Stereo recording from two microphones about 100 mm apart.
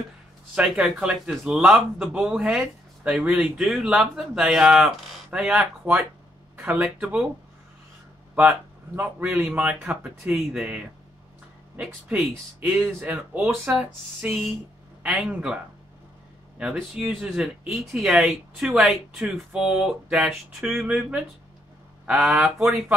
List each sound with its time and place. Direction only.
0.6 s speech: 5° right (ahead or behind)
6.5 s speech: 15° right (ahead or behind)
8.4 s speech: 15° right (ahead or behind)
12.5 s speech: 15° right (ahead or behind)
17.0 s speech: 10° right (ahead or behind)